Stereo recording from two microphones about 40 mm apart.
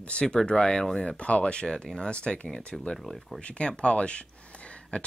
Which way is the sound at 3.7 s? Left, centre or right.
Left.